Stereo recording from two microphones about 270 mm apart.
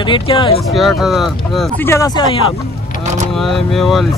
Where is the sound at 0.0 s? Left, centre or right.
Centre.